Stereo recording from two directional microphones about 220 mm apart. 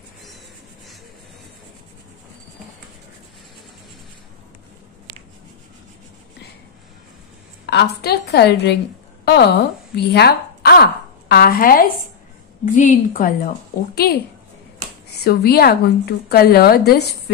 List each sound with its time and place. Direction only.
7.6 s a woman's voice: 50° left (ahead or behind)